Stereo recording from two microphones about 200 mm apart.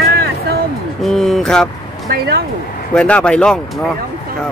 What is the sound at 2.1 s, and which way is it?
Speech, 55° right (ahead or behind).